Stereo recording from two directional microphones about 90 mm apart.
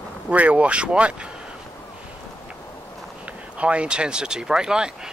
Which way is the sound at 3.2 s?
15° right (ahead or behind).